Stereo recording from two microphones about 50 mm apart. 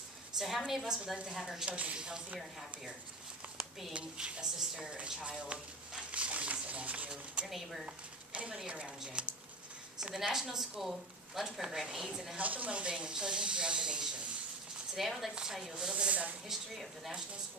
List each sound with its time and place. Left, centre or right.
0.4 s a woman's voice: centre
1.7 s a woman's voice: right
2.0 s speech: centre
3.9 s a woman's voice: centre
6.1 s a sound: right
7.4 s a woman's voice: centre
7.8 s a woman's voice: right; by 12.4 s centre
12.4 s a woman's voice: right
12.9 s speech: centre
15.0 s a woman's voice: centre
16.1 s a woman's voice: right
16.4 s a woman's voice: centre